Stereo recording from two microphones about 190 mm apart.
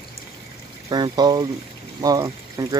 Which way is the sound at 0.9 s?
20° right (ahead or behind).